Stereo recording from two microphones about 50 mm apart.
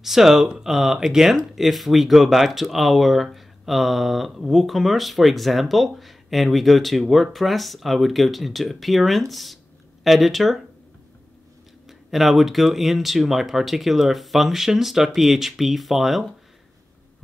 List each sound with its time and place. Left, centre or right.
0.0 s speech: centre
12.1 s speech: centre